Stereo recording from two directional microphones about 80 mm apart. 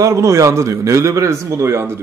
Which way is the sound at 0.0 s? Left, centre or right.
Right.